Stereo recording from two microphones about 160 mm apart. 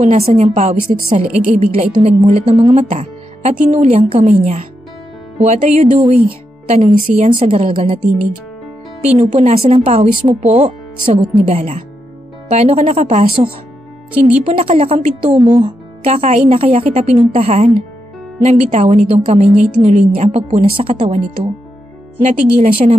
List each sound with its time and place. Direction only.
0.0 s a woman's voice: 40° right (ahead or behind)
9.3 s a woman's voice: 40° right (ahead or behind)
15.3 s speech: 30° right (ahead or behind)
15.6 s a woman's voice: 45° right (ahead or behind)
22.5 s speech: 35° right (ahead or behind)